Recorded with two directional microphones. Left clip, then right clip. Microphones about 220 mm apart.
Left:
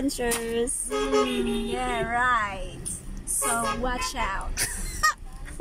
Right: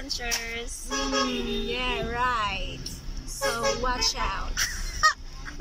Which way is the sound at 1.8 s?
10° right (ahead or behind).